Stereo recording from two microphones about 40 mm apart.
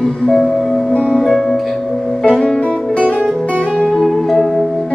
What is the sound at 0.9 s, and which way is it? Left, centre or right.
Music, left.